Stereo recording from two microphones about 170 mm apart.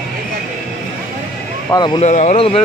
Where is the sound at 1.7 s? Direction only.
25° left (ahead or behind).